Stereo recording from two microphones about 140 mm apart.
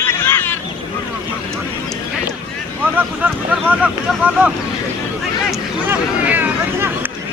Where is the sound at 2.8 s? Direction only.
10° right (ahead or behind).